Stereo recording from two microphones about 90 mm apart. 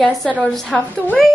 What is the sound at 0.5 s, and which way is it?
Speech, 15° left (ahead or behind).